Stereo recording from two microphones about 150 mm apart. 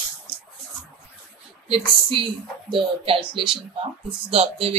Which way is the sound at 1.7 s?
40° right (ahead or behind).